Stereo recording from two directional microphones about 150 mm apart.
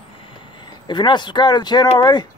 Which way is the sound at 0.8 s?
30° left (ahead or behind).